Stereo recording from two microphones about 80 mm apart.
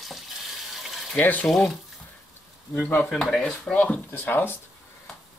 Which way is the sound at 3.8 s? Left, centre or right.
Left.